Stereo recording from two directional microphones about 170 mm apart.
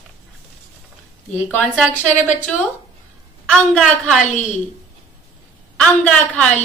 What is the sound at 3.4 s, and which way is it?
Speech, 5° left (ahead or behind).